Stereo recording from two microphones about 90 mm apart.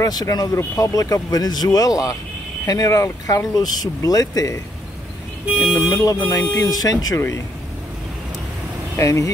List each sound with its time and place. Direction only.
0.0 s speech: 45° left (ahead or behind)
5.9 s speech: 40° left (ahead or behind)
7.2 s speech: 35° left (ahead or behind)
8.9 s speech: 35° left (ahead or behind)